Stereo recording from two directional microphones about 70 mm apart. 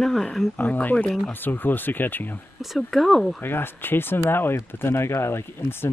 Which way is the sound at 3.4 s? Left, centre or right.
Left.